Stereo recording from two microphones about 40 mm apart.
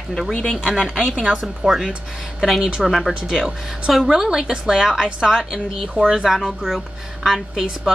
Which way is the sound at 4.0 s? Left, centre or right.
Centre.